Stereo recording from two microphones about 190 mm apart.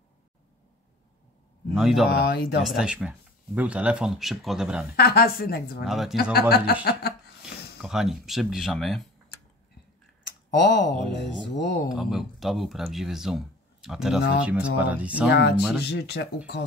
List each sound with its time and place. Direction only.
1.7 s speech: centre (ahead or behind)
2.2 s speech: 55° left (ahead or behind)
2.6 s speech: centre (ahead or behind)
4.9 s a woman's voice: 55° left (ahead or behind)
5.9 s speech: centre (ahead or behind)
6.5 s a sound: 55° left (ahead or behind)
7.8 s speech: centre (ahead or behind)
10.5 s a woman's voice: 65° left (ahead or behind)
11.9 s speech: 5° right (ahead or behind)
15.2 s a woman's voice: 60° left (ahead or behind)